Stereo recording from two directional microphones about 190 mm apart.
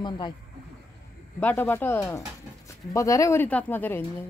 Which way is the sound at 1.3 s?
10° left (ahead or behind).